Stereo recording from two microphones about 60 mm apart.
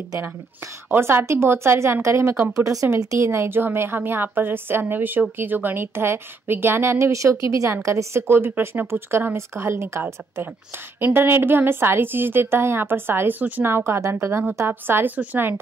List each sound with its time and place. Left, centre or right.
0.8 s a woman's voice: right
2.5 s speech: right
3.3 s a woman's voice: right
7.8 s a woman's voice: right